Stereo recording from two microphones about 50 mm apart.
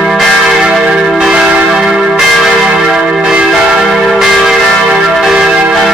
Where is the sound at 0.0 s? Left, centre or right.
Centre.